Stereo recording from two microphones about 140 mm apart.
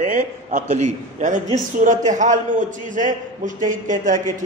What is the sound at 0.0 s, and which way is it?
A man's voice, 65° right (ahead or behind).